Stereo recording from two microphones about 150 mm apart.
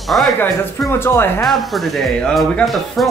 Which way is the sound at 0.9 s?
15° left (ahead or behind).